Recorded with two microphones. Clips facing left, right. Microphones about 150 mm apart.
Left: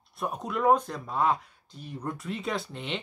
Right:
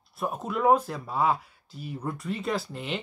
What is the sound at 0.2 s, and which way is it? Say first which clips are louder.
Speech: right 1 dB; centre (ahead or behind).